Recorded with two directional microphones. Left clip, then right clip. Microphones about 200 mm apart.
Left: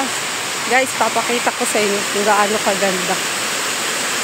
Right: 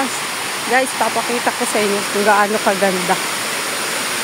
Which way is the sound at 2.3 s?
20° right (ahead or behind).